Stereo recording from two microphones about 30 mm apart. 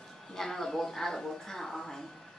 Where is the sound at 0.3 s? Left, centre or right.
Centre.